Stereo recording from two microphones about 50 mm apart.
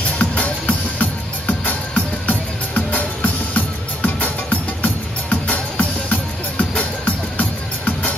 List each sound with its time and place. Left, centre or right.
0.0 s music: left